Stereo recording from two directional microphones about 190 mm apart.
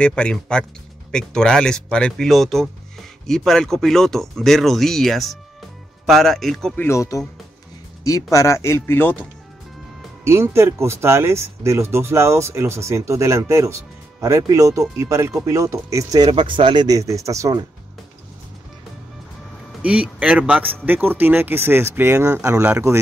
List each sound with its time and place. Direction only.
0.0 s speech: 5° left (ahead or behind)
6.9 s speech: 15° left (ahead or behind)
10.2 s speech: 15° right (ahead or behind)
19.8 s speech: 5° right (ahead or behind)